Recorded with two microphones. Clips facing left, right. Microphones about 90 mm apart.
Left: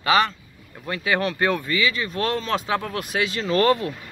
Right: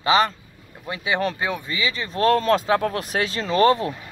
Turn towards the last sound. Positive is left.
turn(degrees=-25)  # may be behind; listen again after turning